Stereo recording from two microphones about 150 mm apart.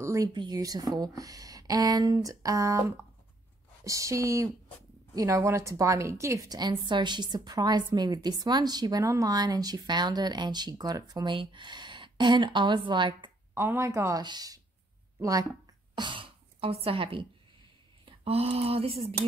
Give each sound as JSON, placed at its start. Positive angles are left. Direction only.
{"t": 0.0, "sound": "a woman's voice", "side_deg": -20}
{"t": 13.6, "sound": "a woman's voice", "side_deg": -15}